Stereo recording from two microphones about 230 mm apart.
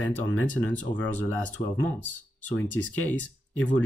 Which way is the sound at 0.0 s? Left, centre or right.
Centre.